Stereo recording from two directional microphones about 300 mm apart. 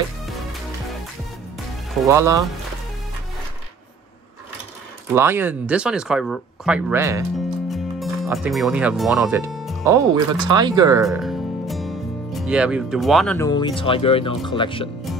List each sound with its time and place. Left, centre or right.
2.0 s speech: centre
5.1 s speech: centre
9.8 s speech: centre
11.1 s music: centre
13.5 s speech: centre